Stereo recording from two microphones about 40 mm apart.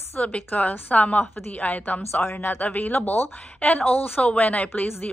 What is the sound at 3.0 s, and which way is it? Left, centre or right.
Speech, left.